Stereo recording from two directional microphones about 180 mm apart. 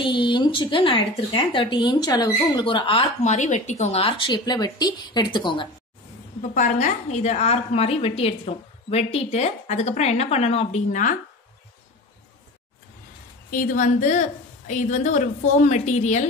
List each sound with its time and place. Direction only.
0.0 s a woman's voice: 25° left (ahead or behind)
6.4 s a woman's voice: 45° left (ahead or behind)
13.5 s a woman's voice: 50° left (ahead or behind)